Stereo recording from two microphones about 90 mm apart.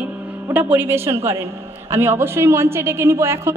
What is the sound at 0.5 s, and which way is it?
A woman's voice, 20° right (ahead or behind).